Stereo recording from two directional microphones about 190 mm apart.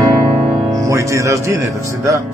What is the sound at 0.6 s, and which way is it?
Speech, 15° right (ahead or behind).